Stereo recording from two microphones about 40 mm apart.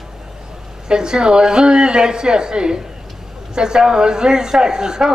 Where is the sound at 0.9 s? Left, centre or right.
Centre.